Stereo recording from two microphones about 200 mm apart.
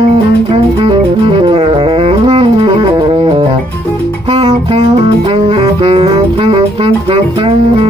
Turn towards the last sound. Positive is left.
turn(degrees=-25)  # may be behind; listen again after turning